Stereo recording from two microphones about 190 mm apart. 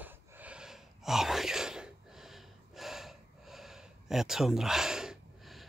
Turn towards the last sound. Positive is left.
turn(degrees=-5)  # may be behind; listen again after turning